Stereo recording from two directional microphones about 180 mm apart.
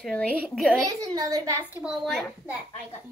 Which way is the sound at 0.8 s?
20° right (ahead or behind).